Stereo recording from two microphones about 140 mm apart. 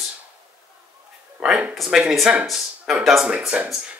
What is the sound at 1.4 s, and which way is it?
Speech, 5° right (ahead or behind).